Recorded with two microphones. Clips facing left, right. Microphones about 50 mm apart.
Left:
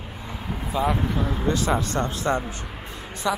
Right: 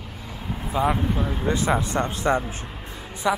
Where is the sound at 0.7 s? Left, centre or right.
Centre.